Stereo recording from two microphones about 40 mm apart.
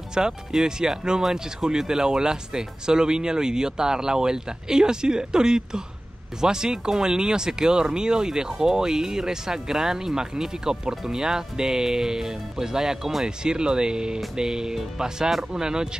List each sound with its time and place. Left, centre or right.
0.1 s speech: centre